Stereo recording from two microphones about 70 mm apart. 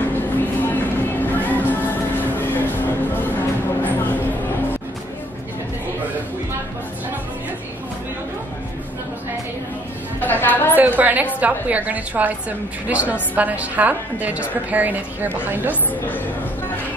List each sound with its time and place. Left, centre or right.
0.1 s music: left
10.2 s a sound: left
10.8 s a woman's voice: right